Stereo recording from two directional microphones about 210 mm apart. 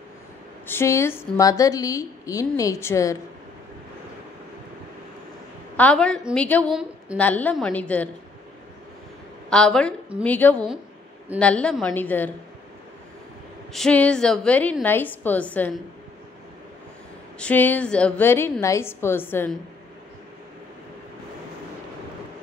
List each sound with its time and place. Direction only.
0.7 s a woman's voice: 10° left (ahead or behind)
5.8 s a woman's voice: 5° left (ahead or behind)
9.5 s a woman's voice: 5° left (ahead or behind)
13.7 s a woman's voice: 5° left (ahead or behind)
17.4 s a woman's voice: 5° left (ahead or behind)